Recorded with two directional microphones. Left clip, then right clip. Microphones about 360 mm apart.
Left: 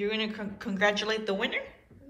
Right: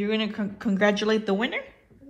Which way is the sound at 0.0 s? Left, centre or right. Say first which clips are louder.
Right 3 dB; centre.